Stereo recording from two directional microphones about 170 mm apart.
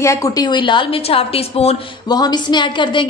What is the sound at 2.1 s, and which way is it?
Speech, 25° left (ahead or behind).